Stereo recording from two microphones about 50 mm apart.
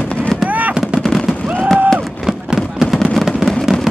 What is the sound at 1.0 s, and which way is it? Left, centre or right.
Fireworks, centre.